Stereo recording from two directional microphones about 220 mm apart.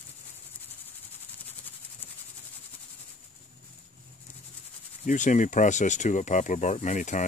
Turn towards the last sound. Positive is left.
turn(degrees=35)  # may be behind; listen again after turning